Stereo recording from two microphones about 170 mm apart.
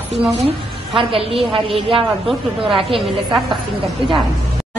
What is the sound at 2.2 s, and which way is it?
A woman's voice, centre (ahead or behind).